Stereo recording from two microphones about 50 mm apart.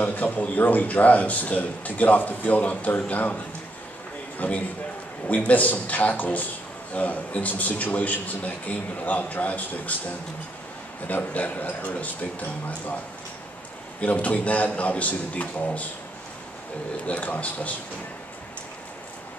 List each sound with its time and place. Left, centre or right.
0.0 s a man's voice: left
4.4 s a man's voice: left
11.1 s a man's voice: left
14.0 s a man's voice: left
17.0 s a man's voice: left